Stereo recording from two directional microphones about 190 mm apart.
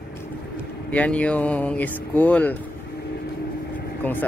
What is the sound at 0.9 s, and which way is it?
Speech, 5° left (ahead or behind).